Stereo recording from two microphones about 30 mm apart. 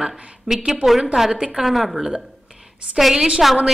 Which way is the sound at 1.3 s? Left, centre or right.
Right.